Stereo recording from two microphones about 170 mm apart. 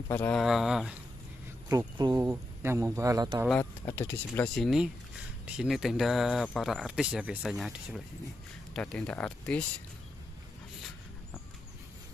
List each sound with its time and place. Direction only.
0.1 s speech: 15° left (ahead or behind)
0.4 s speech: centre (ahead or behind)
1.7 s speech: 25° right (ahead or behind)
3.5 s speech: 15° left (ahead or behind)
4.6 s speech: 5° right (ahead or behind)